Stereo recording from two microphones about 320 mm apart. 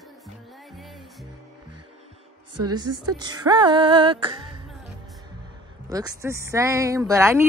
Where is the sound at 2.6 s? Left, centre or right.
Right.